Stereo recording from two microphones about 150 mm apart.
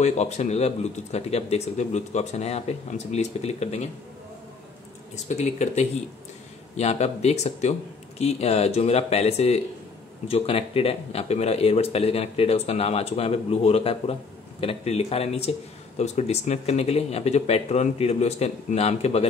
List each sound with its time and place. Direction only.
0.0 s speech: 50° left (ahead or behind)
5.1 s speech: 50° left (ahead or behind)